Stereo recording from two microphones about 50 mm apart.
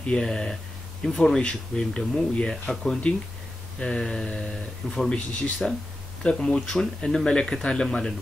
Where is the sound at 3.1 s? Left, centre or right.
Left.